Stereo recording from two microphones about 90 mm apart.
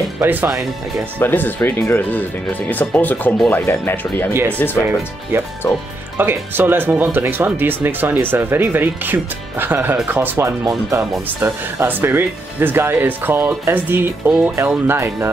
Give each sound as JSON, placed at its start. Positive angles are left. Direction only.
{"t": 0.2, "sound": "speech", "side_deg": -20}
{"t": 1.2, "sound": "speech", "side_deg": 20}
{"t": 4.3, "sound": "speech", "side_deg": -25}
{"t": 4.6, "sound": "speech", "side_deg": 20}
{"t": 6.1, "sound": "speech", "side_deg": -25}